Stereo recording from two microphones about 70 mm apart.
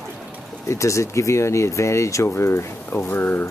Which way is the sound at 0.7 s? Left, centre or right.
Left.